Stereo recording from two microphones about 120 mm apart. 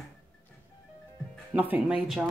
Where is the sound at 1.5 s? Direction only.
15° right (ahead or behind).